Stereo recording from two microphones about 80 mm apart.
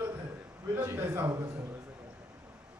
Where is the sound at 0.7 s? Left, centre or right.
Right.